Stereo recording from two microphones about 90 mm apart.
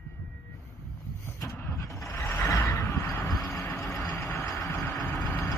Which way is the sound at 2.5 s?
35° left (ahead or behind).